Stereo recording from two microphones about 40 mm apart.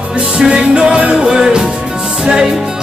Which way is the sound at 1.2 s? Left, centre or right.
Centre.